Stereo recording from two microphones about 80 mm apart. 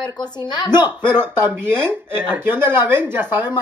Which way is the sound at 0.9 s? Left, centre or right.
Right.